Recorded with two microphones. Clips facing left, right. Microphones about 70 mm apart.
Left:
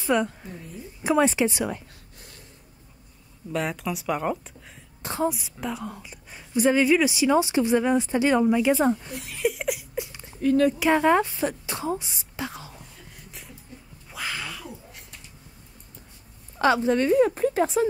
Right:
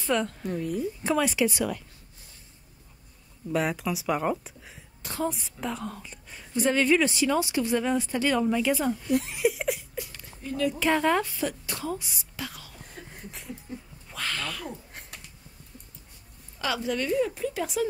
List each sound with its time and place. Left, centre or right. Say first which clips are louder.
0.0 s a woman's voice: left 3 dB; centre
0.5 s speech: right 10 dB; right
1.2 s a woman's voice: left 3 dB; left
3.5 s speech: right 1 dB; centre
5.0 s speech: left 4 dB; left
5.3 s a woman's voice: left 1 dB; centre
8.7 s speech: left 6 dB; left
9.4 s a sound: even; centre
9.9 s a sound: left 5 dB; left
10.4 s speech: left 9 dB; left
10.8 s a woman's voice: left 4 dB; centre
14.1 s a sound: even; centre
14.7 s a sound: right 2 dB; right
16.5 s speech: left 8 dB; left